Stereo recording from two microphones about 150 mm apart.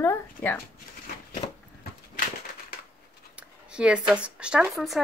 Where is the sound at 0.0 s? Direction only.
15° left (ahead or behind).